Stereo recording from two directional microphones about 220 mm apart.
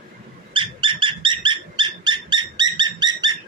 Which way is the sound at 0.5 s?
20° right (ahead or behind).